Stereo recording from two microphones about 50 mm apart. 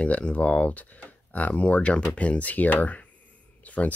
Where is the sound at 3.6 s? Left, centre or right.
Left.